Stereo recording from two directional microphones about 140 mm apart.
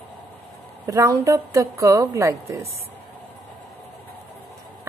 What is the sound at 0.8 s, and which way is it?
A woman's voice, 25° right (ahead or behind).